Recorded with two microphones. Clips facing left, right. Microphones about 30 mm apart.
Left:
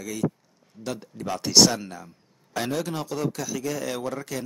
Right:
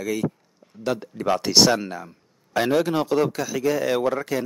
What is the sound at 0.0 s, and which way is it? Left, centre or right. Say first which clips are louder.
Speech: right 3 dB; right.